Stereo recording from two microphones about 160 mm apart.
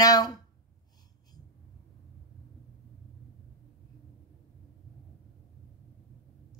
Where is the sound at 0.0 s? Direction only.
20° left (ahead or behind).